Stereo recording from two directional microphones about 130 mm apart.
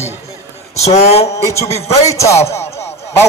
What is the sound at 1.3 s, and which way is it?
A man's voice, 20° left (ahead or behind).